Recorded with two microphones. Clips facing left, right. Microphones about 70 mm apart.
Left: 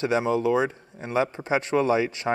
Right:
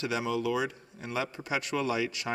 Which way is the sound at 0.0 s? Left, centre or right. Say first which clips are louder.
Left 7 dB; left.